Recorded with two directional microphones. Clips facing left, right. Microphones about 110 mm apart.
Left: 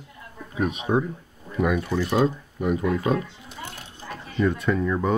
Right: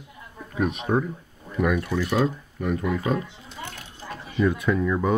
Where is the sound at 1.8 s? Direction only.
20° left (ahead or behind).